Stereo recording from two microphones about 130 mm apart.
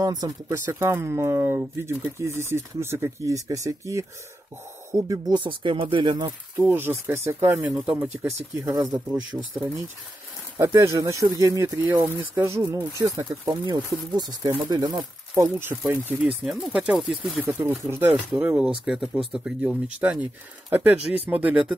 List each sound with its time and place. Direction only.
0.0 s speech: 30° right (ahead or behind)
6.5 s speech: 15° right (ahead or behind)
10.6 s speech: 20° right (ahead or behind)
11.7 s speech: 15° right (ahead or behind)
17.4 s speech: 15° right (ahead or behind)